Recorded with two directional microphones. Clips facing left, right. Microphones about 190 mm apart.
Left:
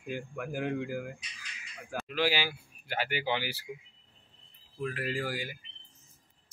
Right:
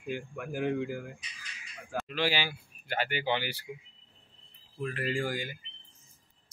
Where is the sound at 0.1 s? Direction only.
5° left (ahead or behind).